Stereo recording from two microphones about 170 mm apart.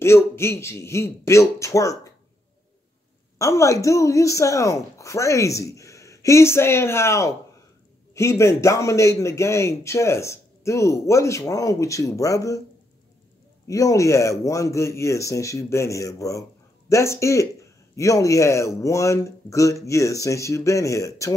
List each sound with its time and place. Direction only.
0.0 s a man's voice: 15° left (ahead or behind)
3.3 s a man's voice: 15° left (ahead or behind)
13.7 s a man's voice: 20° left (ahead or behind)